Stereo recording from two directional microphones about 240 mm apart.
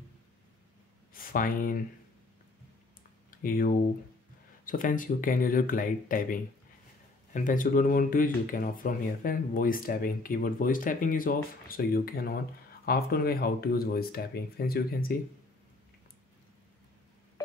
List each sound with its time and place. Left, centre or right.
1.1 s speech: left
3.3 s speech: left